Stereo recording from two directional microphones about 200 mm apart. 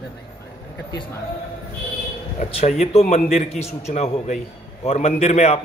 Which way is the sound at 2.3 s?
35° left (ahead or behind).